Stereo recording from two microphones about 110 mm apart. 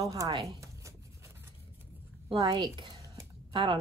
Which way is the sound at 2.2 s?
50° right (ahead or behind).